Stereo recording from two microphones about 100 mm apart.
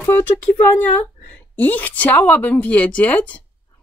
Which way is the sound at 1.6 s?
15° left (ahead or behind).